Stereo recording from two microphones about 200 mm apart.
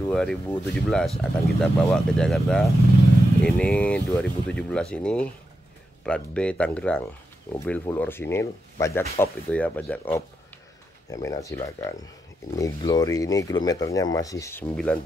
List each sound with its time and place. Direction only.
0.1 s speech: 5° left (ahead or behind)